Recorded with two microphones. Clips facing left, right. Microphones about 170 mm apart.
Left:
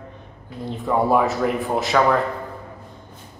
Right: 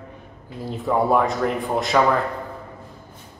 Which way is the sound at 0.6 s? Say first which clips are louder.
Even; centre (ahead or behind).